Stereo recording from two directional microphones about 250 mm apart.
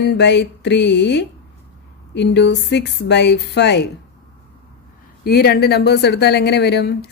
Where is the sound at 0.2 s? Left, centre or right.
Left.